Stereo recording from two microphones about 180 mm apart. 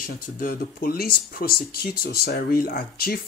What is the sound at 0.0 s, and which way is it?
Speech, 50° left (ahead or behind).